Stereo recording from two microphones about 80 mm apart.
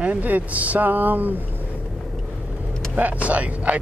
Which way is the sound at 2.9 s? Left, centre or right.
Centre.